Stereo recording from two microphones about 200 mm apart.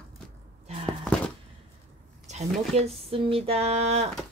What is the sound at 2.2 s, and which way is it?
Speech, 30° right (ahead or behind).